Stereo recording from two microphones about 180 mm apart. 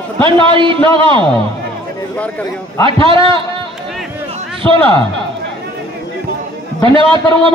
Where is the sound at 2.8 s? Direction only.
30° right (ahead or behind).